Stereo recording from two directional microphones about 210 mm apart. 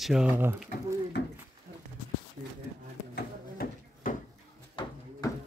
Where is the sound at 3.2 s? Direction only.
45° left (ahead or behind).